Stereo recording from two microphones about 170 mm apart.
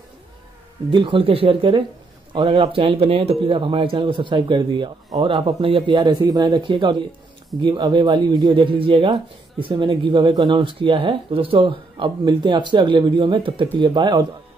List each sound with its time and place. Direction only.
0.8 s speech: 30° right (ahead or behind)